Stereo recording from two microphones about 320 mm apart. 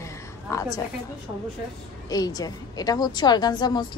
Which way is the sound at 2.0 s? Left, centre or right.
Centre.